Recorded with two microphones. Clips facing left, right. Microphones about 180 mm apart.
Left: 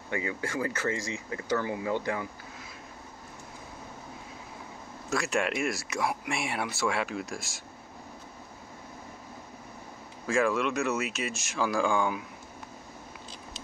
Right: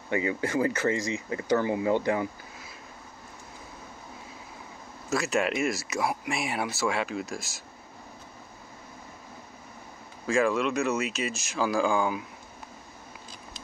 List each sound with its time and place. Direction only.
0.1 s speech: 20° right (ahead or behind)
5.1 s speech: centre (ahead or behind)
10.2 s speech: centre (ahead or behind)